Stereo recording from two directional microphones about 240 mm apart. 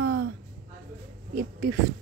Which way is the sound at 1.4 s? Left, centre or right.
Right.